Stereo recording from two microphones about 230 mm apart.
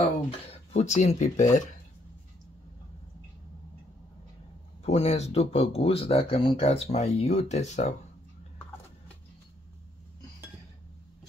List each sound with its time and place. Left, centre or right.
0.3 s speech: left
4.8 s speech: left